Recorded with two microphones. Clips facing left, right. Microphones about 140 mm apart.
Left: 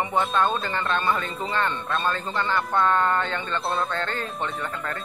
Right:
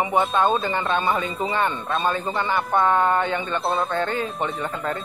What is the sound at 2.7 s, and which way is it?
Speech, 20° right (ahead or behind).